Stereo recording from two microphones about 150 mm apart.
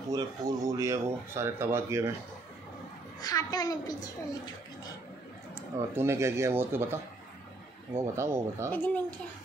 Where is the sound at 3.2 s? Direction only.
25° left (ahead or behind).